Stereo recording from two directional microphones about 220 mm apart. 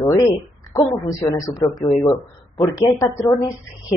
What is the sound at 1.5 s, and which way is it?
A woman's voice, 15° left (ahead or behind).